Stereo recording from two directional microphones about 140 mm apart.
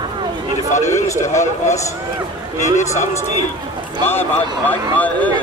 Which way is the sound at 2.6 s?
55° left (ahead or behind).